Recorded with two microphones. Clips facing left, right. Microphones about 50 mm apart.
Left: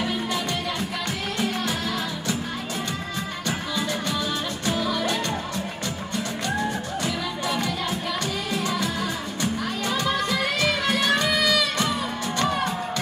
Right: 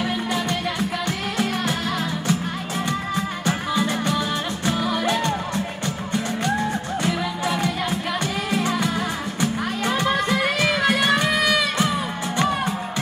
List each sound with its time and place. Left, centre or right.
3.4 s music: right
7.4 s music: centre